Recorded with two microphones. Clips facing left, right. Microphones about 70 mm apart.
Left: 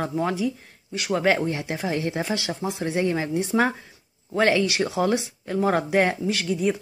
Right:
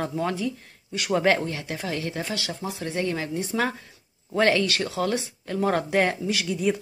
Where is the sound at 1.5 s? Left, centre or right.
Left.